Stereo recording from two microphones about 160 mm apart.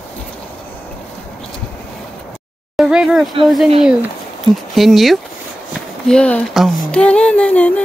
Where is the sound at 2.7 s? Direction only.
5° right (ahead or behind).